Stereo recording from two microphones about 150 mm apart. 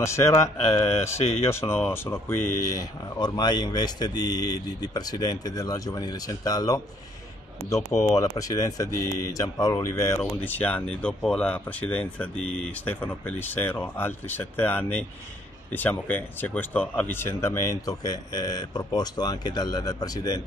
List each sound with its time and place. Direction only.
0.0 s speech: 20° left (ahead or behind)